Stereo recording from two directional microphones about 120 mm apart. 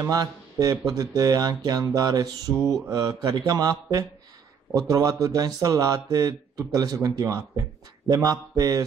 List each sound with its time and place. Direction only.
0.1 s speech: 30° right (ahead or behind)